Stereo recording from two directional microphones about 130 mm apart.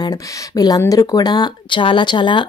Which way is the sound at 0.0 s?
30° left (ahead or behind).